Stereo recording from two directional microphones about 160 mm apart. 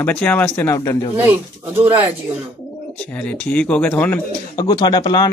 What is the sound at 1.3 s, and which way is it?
Speech, 15° right (ahead or behind).